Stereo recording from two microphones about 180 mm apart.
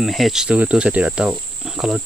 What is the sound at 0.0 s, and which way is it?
Speech, centre (ahead or behind).